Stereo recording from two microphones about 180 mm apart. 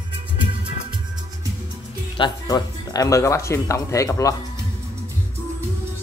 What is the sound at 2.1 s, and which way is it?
Speech, 25° left (ahead or behind).